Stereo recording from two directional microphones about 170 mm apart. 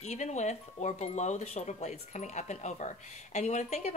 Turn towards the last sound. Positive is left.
turn(degrees=40)  # may be behind; listen again after turning